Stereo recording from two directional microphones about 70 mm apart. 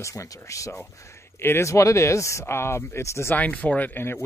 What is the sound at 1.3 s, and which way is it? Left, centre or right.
Speech, left.